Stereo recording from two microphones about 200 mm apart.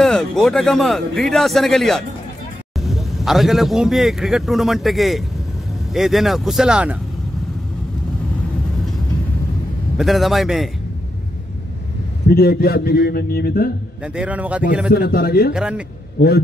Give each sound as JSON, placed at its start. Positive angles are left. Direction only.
{"t": 0.0, "sound": "speech", "side_deg": 0}
{"t": 9.9, "sound": "speech", "side_deg": 0}
{"t": 12.3, "sound": "a man's voice", "side_deg": 50}
{"t": 14.0, "sound": "a man's voice", "side_deg": -5}
{"t": 15.0, "sound": "a man's voice", "side_deg": 50}
{"t": 15.5, "sound": "speech", "side_deg": -5}
{"t": 16.2, "sound": "a man's voice", "side_deg": 55}